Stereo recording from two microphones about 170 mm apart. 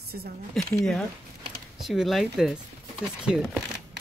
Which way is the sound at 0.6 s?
Centre (ahead or behind).